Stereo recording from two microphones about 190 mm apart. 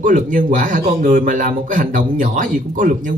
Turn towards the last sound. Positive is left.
turn(degrees=-45)  # may be behind; listen again after turning